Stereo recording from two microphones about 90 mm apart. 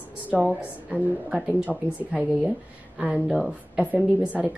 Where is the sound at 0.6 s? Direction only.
15° right (ahead or behind).